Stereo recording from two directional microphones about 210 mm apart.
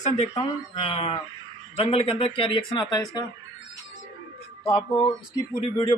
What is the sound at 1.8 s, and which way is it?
Speech, 25° left (ahead or behind).